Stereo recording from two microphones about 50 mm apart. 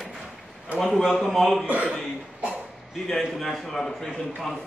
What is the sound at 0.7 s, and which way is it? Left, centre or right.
Speech, centre.